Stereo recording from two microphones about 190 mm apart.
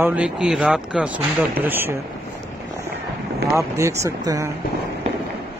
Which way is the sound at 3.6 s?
15° right (ahead or behind).